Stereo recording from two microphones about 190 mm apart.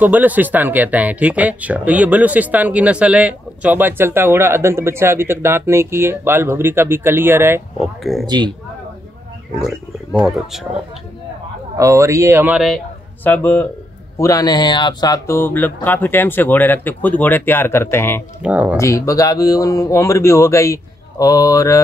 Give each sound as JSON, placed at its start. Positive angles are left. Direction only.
{"t": 0.0, "sound": "speech", "side_deg": -10}
{"t": 7.8, "sound": "speech", "side_deg": 0}
{"t": 8.3, "sound": "speech", "side_deg": -20}
{"t": 9.6, "sound": "speech", "side_deg": 0}
{"t": 11.7, "sound": "a man's voice", "side_deg": -15}
{"t": 18.4, "sound": "speech", "side_deg": -5}
{"t": 18.8, "sound": "speech", "side_deg": 15}